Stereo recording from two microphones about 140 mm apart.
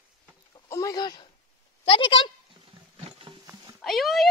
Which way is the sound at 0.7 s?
25° left (ahead or behind).